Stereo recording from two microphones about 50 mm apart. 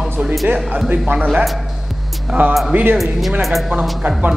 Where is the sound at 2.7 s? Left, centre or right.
Right.